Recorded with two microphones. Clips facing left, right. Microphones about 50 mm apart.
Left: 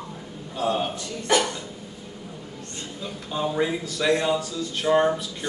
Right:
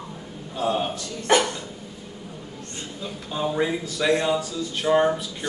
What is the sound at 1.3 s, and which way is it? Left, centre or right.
Dog, right.